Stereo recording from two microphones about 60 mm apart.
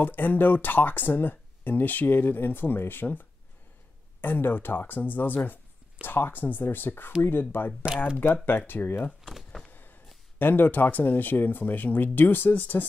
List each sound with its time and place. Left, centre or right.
0.0 s speech: left
9.2 s power windows: centre
9.7 s a sound: left
10.4 s speech: left